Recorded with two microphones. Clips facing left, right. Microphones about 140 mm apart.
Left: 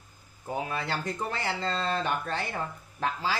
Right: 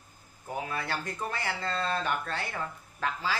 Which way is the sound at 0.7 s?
20° left (ahead or behind).